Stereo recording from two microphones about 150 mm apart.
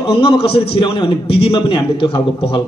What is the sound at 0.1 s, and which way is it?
A man's voice, 40° left (ahead or behind).